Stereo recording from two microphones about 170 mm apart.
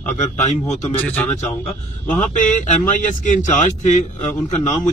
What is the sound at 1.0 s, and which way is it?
Speech, 10° left (ahead or behind).